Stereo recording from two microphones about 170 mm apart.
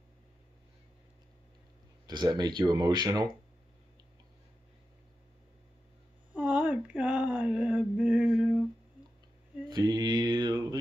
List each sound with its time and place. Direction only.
2.0 s speech: 25° right (ahead or behind)
6.3 s a sound: 5° right (ahead or behind)
9.7 s mantra: 25° right (ahead or behind)